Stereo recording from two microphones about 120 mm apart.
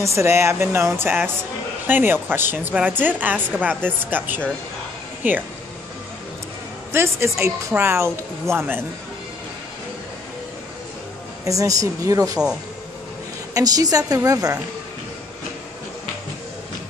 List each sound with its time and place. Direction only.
0.0 s speech: 25° right (ahead or behind)
6.9 s speech: 20° right (ahead or behind)
11.4 s speech: 30° right (ahead or behind)
13.6 s speech: 30° right (ahead or behind)